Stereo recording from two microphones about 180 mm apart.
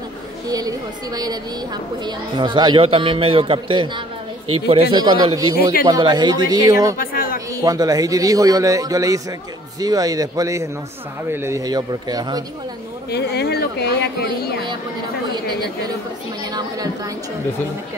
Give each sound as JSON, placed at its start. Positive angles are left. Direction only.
{"t": 0.5, "sound": "speech", "side_deg": -20}
{"t": 7.0, "sound": "a sound", "side_deg": 55}
{"t": 7.3, "sound": "speech", "side_deg": -20}
{"t": 13.1, "sound": "speech", "side_deg": 65}
{"t": 16.5, "sound": "speech", "side_deg": -20}